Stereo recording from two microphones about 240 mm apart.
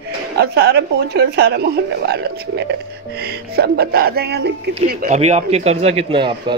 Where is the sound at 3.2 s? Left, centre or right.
Right.